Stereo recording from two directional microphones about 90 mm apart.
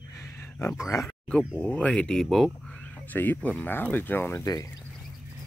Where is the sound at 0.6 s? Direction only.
30° left (ahead or behind).